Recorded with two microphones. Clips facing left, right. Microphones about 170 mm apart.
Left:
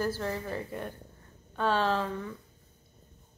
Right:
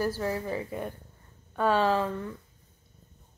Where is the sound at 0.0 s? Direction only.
10° right (ahead or behind).